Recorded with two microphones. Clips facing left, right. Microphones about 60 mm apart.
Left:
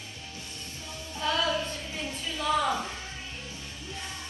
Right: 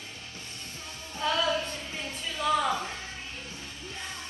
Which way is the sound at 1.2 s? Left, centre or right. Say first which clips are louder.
Even; centre.